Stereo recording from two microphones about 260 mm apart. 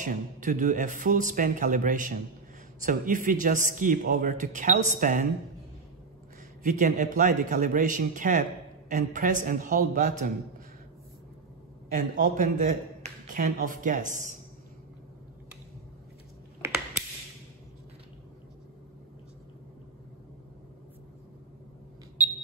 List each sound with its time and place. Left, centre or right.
0.0 s speech: right
6.6 s a man's voice: right
11.9 s speech: right